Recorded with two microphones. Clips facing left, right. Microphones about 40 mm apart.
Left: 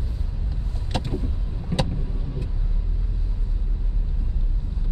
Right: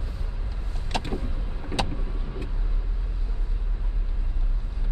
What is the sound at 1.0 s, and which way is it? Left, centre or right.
Vehicle, right.